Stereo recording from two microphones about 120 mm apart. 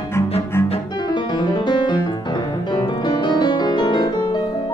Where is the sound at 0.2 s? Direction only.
20° left (ahead or behind).